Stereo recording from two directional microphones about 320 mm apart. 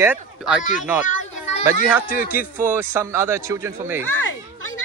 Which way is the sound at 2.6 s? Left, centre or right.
Centre.